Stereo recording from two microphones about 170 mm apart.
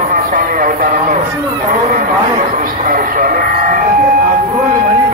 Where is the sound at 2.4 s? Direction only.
55° right (ahead or behind).